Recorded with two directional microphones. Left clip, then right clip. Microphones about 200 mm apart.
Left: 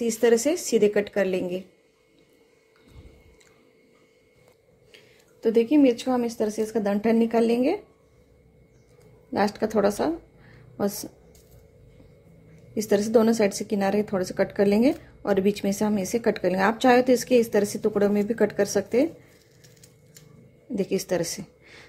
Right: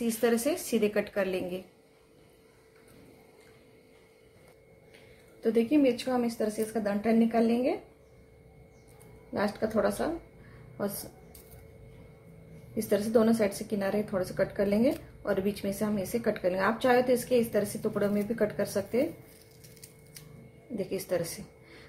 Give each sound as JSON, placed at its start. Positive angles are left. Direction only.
{"t": 0.0, "sound": "speech", "side_deg": 35}
{"t": 5.4, "sound": "speech", "side_deg": 45}
{"t": 9.3, "sound": "speech", "side_deg": 45}
{"t": 12.7, "sound": "speech", "side_deg": 45}
{"t": 20.7, "sound": "a woman's voice", "side_deg": 45}